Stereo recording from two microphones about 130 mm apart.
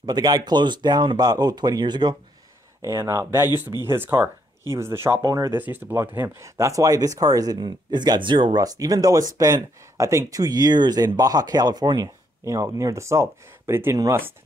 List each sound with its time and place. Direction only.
0.0 s speech: 30° right (ahead or behind)
5.6 s speech: 15° right (ahead or behind)